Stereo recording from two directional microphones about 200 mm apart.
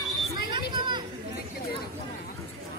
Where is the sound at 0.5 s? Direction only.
20° right (ahead or behind).